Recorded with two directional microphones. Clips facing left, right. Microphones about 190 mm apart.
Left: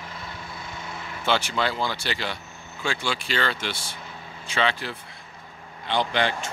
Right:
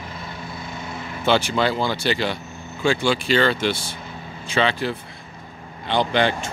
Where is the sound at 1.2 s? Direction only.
25° right (ahead or behind).